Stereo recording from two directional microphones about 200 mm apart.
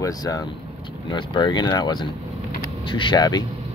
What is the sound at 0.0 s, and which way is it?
Speech, 20° left (ahead or behind).